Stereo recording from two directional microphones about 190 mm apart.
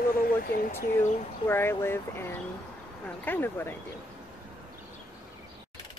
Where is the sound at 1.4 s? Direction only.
10° left (ahead or behind).